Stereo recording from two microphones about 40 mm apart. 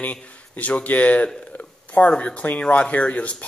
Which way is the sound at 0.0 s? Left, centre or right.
Left.